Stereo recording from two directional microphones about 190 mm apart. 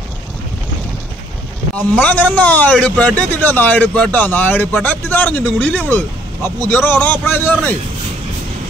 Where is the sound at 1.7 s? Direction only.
10° left (ahead or behind).